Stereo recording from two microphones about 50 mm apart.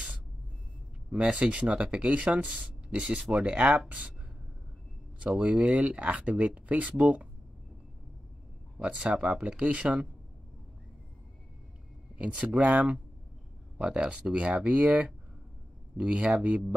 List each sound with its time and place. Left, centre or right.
1.3 s speech: right
5.2 s speech: right
8.8 s speech: right
12.2 s speech: right